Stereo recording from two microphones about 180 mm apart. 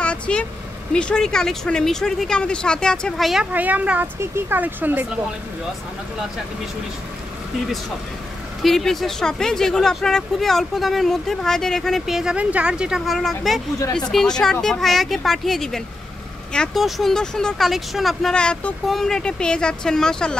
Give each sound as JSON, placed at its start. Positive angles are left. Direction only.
{"t": 0.0, "sound": "vehicle", "side_deg": 5}
{"t": 0.9, "sound": "speech", "side_deg": 5}
{"t": 8.6, "sound": "speech", "side_deg": 0}